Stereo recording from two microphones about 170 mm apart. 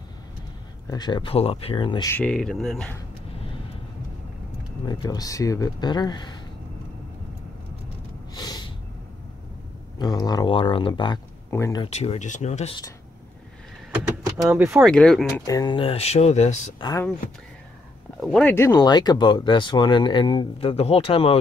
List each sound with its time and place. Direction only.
0.8 s speech: 25° left (ahead or behind)
2.0 s speech: 10° left (ahead or behind)
4.8 s speech: 25° left (ahead or behind)
8.4 s snort: 25° left (ahead or behind)
9.9 s speech: 25° left (ahead or behind)
11.5 s speech: 15° left (ahead or behind)
11.8 s speech: 40° left (ahead or behind)
14.3 s speech: 10° right (ahead or behind)
14.9 s speech: 5° left (ahead or behind)
15.4 s speech: 20° left (ahead or behind); by 16.7 s 45° left (ahead or behind)
18.2 s speech: centre (ahead or behind)
18.7 s speech: 25° left (ahead or behind)